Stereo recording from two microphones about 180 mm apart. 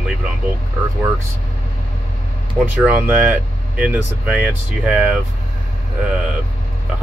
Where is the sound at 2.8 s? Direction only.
10° right (ahead or behind).